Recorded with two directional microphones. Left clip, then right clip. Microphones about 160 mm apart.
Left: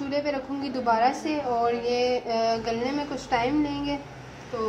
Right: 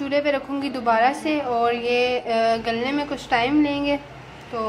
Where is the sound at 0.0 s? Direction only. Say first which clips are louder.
Right 6 dB; centre (ahead or behind).